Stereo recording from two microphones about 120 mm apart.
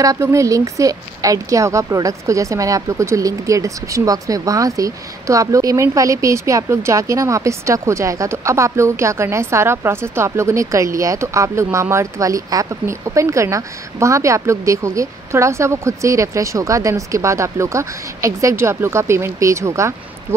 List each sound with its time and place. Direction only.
0.0 s a woman's voice: 25° right (ahead or behind)